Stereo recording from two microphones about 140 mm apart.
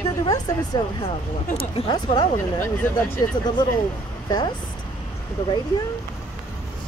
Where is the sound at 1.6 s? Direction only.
40° left (ahead or behind).